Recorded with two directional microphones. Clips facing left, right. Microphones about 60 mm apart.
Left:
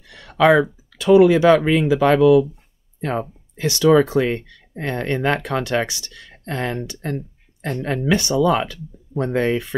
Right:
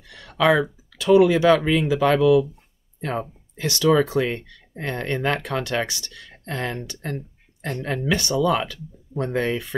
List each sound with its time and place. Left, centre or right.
0.1 s speech: left